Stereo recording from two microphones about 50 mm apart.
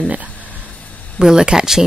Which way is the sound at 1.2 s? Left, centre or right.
Centre.